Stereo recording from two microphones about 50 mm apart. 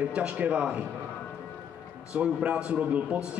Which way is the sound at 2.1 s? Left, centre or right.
Centre.